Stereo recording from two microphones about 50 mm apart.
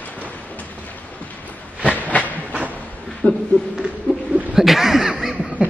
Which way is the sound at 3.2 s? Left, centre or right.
Left.